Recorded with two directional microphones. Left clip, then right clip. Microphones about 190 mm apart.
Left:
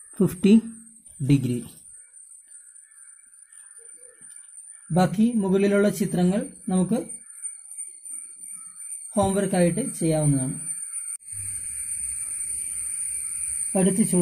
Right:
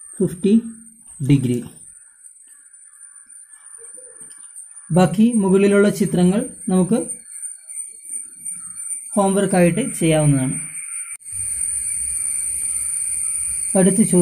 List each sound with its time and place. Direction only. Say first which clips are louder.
0.2 s speech: right 2 dB; 40° left (ahead or behind)
1.2 s a man's voice: right 5 dB; 10° left (ahead or behind)
4.9 s speech: right 6 dB; 5° left (ahead or behind)
9.1 s a man's voice: right 6 dB; 15° left (ahead or behind)
13.7 s speech: right 7 dB; 5° left (ahead or behind)